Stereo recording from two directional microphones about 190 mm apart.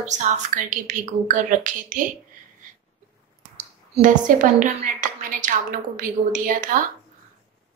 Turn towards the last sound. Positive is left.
turn(degrees=-45)  # may be behind; listen again after turning